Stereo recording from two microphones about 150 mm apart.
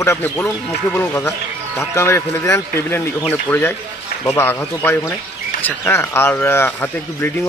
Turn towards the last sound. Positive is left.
turn(degrees=15)  # may be behind; listen again after turning